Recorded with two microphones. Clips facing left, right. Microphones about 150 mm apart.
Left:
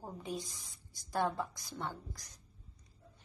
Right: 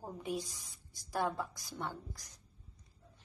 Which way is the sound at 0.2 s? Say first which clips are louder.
Right 3 dB; 15° right (ahead or behind).